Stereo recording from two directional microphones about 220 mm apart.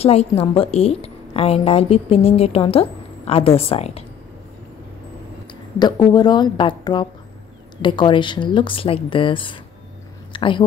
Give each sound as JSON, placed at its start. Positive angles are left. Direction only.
{"t": 0.0, "sound": "a woman's voice", "side_deg": 25}
{"t": 5.8, "sound": "a woman's voice", "side_deg": 20}